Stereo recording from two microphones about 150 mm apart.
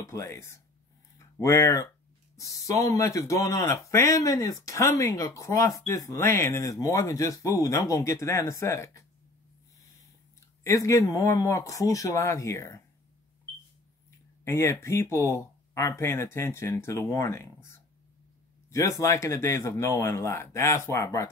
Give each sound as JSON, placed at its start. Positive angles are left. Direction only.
{"t": 0.0, "sound": "speech", "side_deg": 20}
{"t": 10.6, "sound": "speech", "side_deg": 20}
{"t": 14.4, "sound": "speech", "side_deg": 20}